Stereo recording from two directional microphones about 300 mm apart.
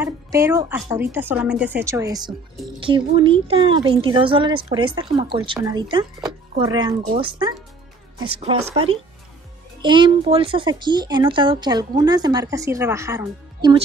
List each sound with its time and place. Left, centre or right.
0.0 s speech: centre
9.8 s speech: centre